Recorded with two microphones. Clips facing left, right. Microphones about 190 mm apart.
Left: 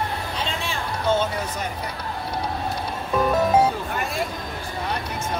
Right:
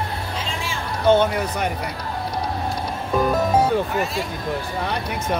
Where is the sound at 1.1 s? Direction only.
65° right (ahead or behind).